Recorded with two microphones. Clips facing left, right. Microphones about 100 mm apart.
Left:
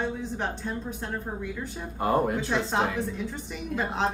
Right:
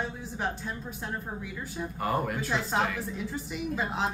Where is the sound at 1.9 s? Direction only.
25° left (ahead or behind).